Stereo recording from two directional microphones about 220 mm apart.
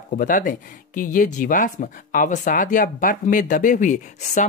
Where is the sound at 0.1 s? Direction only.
35° left (ahead or behind).